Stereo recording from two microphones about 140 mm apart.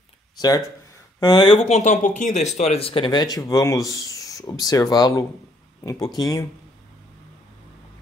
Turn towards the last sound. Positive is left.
turn(degrees=25)  # may be behind; listen again after turning